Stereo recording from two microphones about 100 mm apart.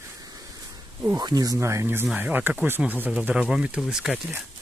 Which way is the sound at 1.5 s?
25° right (ahead or behind).